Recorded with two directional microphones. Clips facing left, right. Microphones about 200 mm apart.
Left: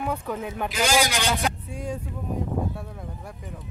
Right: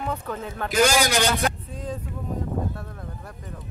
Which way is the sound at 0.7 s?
45° right (ahead or behind).